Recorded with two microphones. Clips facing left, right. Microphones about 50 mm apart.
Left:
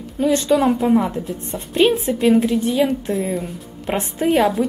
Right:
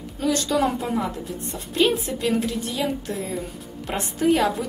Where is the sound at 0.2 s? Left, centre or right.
Left.